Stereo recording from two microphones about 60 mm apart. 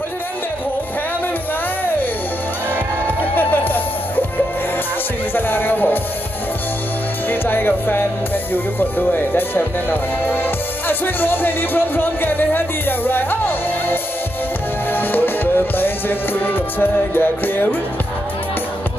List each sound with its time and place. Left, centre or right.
3.3 s music: left
5.3 s music: left
7.2 s speech: left
14.9 s music: left